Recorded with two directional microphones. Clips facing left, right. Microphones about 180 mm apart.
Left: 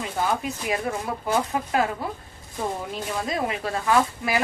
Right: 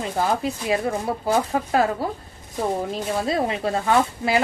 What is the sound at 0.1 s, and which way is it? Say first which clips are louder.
Speech: right 3 dB; 30° right (ahead or behind).